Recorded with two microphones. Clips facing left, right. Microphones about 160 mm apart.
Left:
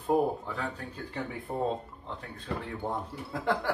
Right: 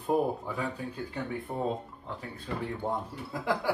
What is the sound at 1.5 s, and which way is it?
Speech, 20° left (ahead or behind).